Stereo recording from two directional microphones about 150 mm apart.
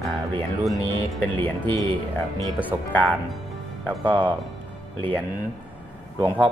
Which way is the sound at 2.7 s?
15° right (ahead or behind).